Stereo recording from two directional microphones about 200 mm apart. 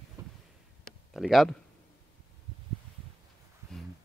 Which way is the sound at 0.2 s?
15° right (ahead or behind).